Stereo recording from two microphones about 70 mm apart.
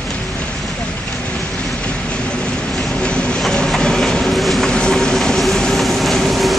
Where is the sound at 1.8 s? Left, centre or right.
Centre.